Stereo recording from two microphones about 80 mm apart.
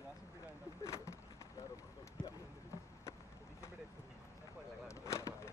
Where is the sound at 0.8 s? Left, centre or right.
Left.